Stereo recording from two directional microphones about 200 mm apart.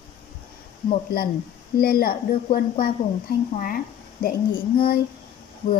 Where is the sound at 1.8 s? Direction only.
50° left (ahead or behind).